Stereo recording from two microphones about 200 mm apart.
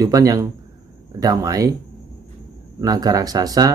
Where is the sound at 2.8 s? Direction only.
20° right (ahead or behind).